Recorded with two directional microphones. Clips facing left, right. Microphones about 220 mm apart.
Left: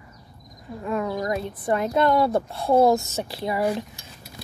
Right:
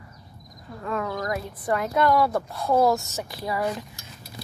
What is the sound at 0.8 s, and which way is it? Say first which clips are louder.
Speech: left 3 dB; 20° left (ahead or behind).